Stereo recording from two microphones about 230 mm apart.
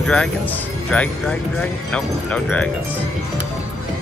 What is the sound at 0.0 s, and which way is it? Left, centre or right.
Speech, centre.